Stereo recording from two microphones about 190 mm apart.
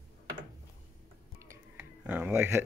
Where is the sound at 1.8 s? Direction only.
5° right (ahead or behind).